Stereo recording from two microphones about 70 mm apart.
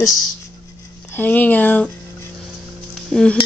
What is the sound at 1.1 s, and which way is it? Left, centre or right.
Speech, left.